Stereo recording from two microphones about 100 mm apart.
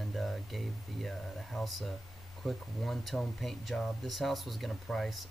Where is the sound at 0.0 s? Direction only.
Centre (ahead or behind).